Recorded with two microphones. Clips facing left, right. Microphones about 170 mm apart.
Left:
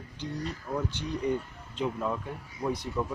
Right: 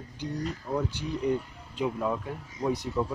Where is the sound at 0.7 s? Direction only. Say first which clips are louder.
Right 3 dB; 30° right (ahead or behind).